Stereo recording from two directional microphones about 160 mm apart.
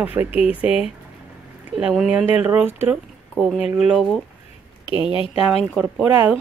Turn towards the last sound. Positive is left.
turn(degrees=-5)  # may be behind; listen again after turning